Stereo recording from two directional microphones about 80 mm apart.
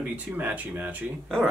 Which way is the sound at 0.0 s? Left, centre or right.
Right.